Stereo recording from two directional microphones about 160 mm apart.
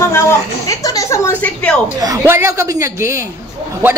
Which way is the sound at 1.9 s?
20° right (ahead or behind).